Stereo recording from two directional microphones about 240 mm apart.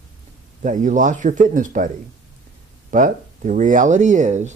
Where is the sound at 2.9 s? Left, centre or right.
Right.